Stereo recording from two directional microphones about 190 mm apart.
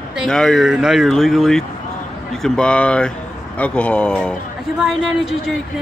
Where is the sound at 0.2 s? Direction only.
Centre (ahead or behind).